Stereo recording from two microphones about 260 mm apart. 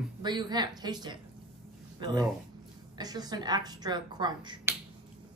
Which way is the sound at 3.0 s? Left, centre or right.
Centre.